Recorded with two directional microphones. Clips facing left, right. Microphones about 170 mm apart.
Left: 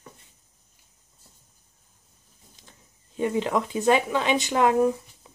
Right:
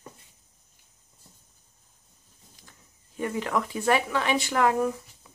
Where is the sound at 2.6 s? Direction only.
25° left (ahead or behind).